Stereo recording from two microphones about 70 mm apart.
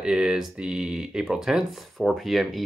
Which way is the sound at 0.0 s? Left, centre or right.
Centre.